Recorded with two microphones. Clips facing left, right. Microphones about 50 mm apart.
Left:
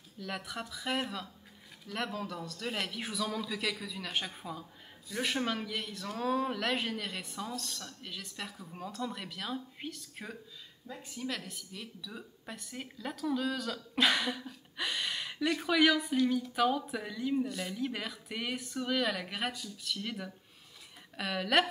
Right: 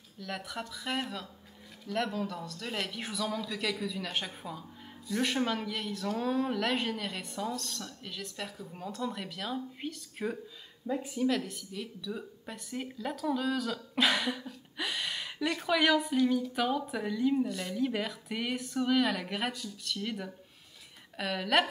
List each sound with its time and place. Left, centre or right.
0.2 s a woman's voice: centre